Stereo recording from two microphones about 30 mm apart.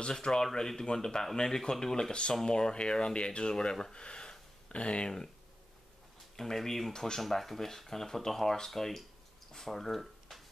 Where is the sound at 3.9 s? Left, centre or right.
Left.